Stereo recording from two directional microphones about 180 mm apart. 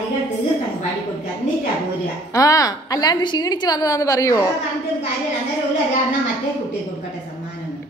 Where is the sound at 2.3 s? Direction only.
20° left (ahead or behind).